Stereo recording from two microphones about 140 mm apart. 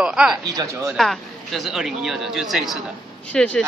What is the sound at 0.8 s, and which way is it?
A woman's voice, centre (ahead or behind).